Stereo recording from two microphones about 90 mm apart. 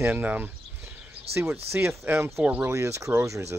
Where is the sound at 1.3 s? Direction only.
30° right (ahead or behind).